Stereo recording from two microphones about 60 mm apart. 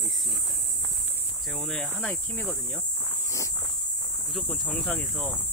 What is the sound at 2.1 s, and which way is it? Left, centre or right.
Speech, left.